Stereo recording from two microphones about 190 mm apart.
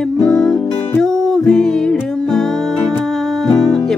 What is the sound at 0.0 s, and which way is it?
Music, 5° left (ahead or behind).